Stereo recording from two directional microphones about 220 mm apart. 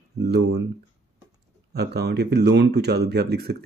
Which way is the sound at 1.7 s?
50° right (ahead or behind).